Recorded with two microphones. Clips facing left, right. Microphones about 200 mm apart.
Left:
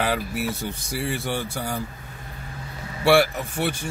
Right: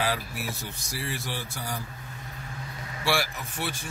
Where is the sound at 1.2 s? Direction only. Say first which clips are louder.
Left 8 dB; 55° left (ahead or behind).